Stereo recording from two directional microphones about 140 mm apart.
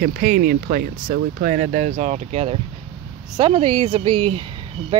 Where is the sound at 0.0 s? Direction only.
90° right.